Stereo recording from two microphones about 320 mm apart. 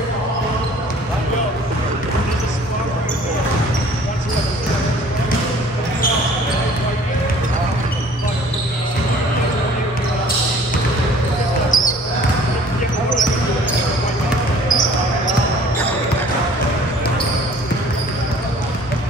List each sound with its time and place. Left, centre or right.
11.7 s basketball bounce: left